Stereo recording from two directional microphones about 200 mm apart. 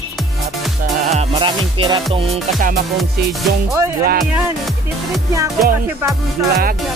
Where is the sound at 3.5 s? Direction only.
50° right (ahead or behind).